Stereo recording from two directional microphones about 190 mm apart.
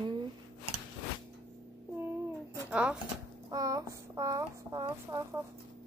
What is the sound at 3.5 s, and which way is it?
Speech, 15° right (ahead or behind).